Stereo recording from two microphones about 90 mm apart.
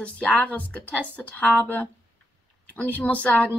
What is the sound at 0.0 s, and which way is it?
Speech, 15° left (ahead or behind).